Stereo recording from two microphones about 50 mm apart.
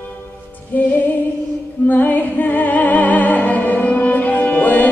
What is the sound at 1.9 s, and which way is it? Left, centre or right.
Music, left.